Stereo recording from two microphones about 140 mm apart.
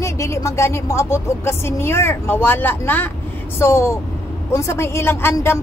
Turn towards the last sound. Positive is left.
turn(degrees=15)  # may be behind; listen again after turning